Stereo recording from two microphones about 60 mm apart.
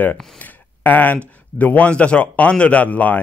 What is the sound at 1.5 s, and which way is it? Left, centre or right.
Speech, left.